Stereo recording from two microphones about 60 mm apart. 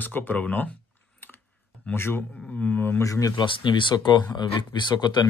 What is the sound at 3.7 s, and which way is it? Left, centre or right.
Speech, left.